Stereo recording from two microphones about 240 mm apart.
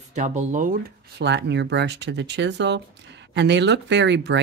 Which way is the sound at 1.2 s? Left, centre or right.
Right.